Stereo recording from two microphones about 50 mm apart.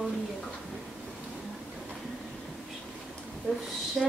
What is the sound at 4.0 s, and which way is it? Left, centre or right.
Speech, centre.